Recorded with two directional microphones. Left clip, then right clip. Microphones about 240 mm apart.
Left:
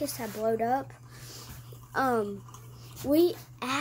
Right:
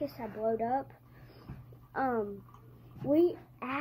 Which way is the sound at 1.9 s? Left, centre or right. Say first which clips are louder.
Left 5 dB; left.